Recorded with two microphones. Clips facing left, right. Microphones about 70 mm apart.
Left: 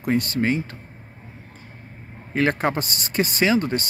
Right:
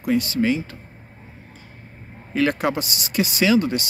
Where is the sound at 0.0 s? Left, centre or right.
Left.